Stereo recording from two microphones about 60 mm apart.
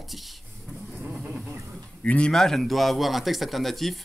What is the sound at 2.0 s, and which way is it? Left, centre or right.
Speech, centre.